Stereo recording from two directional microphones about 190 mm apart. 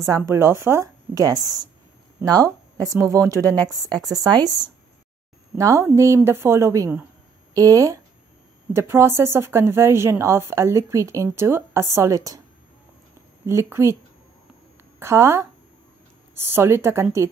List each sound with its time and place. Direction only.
0.3 s a woman's voice: 15° right (ahead or behind)
5.6 s a woman's voice: 15° right (ahead or behind)
13.5 s a woman's voice: 15° right (ahead or behind)
15.0 s a woman's voice: 15° right (ahead or behind)